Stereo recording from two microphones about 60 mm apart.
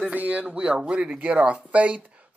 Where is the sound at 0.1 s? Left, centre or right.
Right.